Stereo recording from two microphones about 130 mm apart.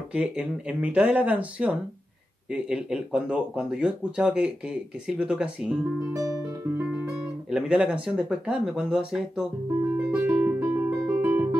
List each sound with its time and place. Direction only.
0.1 s speech: 10° right (ahead or behind)
6.1 s music: 25° right (ahead or behind)
6.8 s guitar: 10° right (ahead or behind)
7.5 s speech: 10° right (ahead or behind)
10.1 s music: 15° right (ahead or behind)